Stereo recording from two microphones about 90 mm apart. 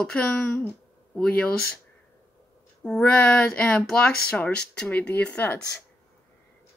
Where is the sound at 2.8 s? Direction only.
10° left (ahead or behind).